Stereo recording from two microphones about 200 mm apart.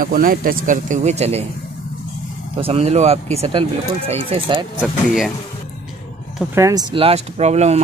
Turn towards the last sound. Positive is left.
turn(degrees=-35)  # may be behind; listen again after turning